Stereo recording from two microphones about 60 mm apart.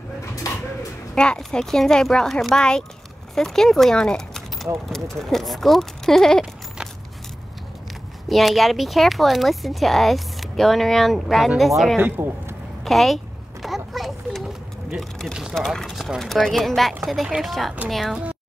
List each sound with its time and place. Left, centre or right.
1.1 s speech: centre
8.3 s speech: centre
12.2 s speech: right
12.8 s a sound: centre
15.0 s speech: centre